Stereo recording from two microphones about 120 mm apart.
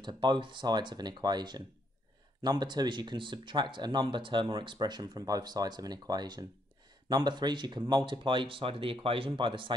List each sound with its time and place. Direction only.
0.0 s speech: 40° right (ahead or behind)